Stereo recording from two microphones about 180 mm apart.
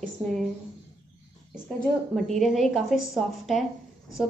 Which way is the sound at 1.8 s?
Centre (ahead or behind).